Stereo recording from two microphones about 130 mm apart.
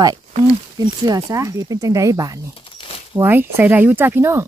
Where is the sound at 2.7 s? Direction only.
45° left (ahead or behind).